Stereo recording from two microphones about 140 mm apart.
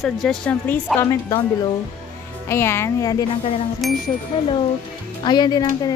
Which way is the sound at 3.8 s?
Centre (ahead or behind).